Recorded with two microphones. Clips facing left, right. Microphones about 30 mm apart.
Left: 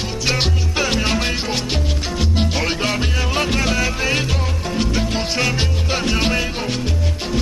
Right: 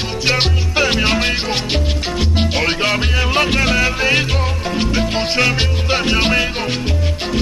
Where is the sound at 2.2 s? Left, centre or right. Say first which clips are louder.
Right 2 dB; right.